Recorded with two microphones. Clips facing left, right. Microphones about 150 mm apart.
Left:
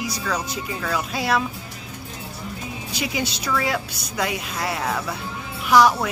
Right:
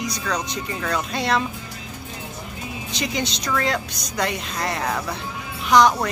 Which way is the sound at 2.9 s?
5° left (ahead or behind).